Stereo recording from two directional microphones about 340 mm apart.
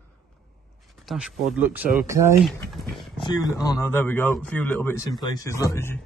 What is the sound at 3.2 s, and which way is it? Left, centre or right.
A man's voice, centre.